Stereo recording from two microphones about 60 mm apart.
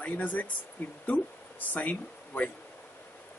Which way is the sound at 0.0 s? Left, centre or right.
Left.